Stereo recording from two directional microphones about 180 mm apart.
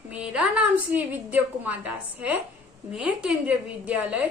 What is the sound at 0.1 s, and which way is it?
A woman's voice, 5° right (ahead or behind).